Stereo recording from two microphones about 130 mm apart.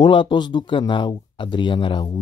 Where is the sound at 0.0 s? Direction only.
35° left (ahead or behind).